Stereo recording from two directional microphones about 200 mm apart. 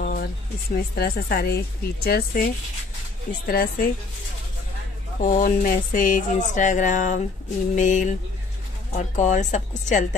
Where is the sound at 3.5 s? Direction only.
45° left (ahead or behind).